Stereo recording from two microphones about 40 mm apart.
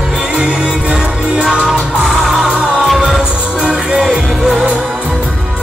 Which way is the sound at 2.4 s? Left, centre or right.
Right.